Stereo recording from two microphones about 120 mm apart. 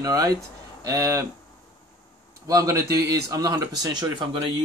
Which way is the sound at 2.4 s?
30° right (ahead or behind).